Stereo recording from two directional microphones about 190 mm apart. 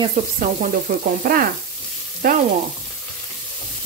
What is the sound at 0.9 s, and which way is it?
Frying, 50° right (ahead or behind).